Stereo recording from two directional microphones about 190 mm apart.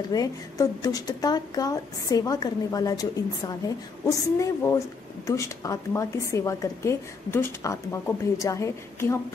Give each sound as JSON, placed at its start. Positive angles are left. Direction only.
{"t": 0.1, "sound": "a woman's voice", "side_deg": 20}